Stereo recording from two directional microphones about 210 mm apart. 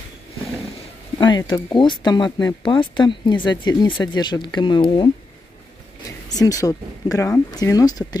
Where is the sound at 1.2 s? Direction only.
20° left (ahead or behind).